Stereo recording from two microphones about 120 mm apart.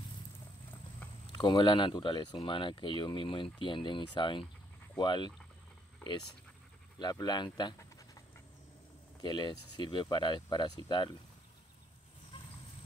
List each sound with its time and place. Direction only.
1.3 s speech: 40° left (ahead or behind)
7.0 s speech: 35° left (ahead or behind)
9.2 s speech: 40° left (ahead or behind)